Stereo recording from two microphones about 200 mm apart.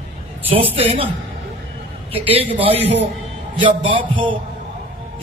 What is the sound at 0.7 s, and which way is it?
Speech, 30° right (ahead or behind).